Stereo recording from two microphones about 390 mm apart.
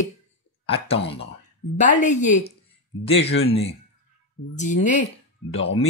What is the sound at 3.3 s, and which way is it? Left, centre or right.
Speech, left.